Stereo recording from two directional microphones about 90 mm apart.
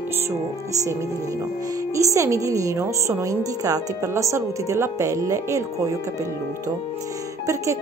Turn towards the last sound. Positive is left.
turn(degrees=-35)  # may be behind; listen again after turning